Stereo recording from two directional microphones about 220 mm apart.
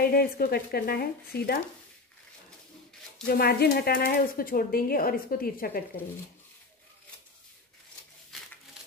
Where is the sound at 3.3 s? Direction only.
45° left (ahead or behind).